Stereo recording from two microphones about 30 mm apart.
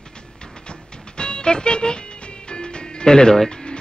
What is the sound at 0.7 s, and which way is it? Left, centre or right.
Music, left.